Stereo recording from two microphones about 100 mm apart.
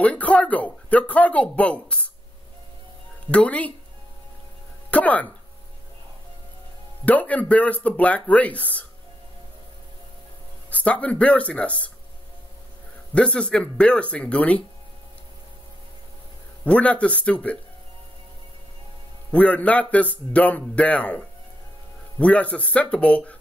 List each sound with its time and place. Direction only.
0.0 s speech: 15° left (ahead or behind)
3.3 s speech: 15° left (ahead or behind)
4.9 s speech: 15° left (ahead or behind)
7.1 s speech: 15° left (ahead or behind)
10.7 s speech: 15° left (ahead or behind)
13.1 s speech: 10° left (ahead or behind)
16.6 s speech: 15° left (ahead or behind)
19.3 s speech: 15° left (ahead or behind)
22.2 s speech: 15° left (ahead or behind)